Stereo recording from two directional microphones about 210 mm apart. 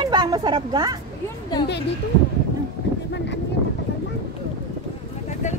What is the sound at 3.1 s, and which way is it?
Wind noise, 55° left (ahead or behind).